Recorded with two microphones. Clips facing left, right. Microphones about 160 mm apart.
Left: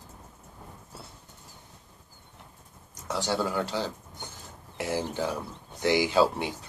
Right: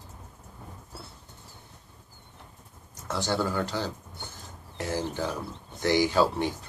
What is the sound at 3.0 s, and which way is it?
Speech, 15° left (ahead or behind).